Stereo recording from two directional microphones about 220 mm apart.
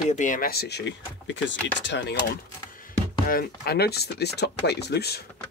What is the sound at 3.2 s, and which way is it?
Speech, 45° left (ahead or behind).